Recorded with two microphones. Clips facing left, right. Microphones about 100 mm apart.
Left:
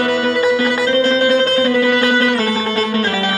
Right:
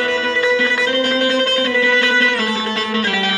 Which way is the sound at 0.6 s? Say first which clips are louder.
Left 3 dB; 25° left (ahead or behind).